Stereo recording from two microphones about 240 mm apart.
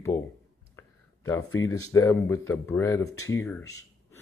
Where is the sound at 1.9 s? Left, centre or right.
Centre.